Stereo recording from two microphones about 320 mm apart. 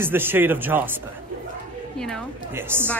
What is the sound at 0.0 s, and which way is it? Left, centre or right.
Speech, centre.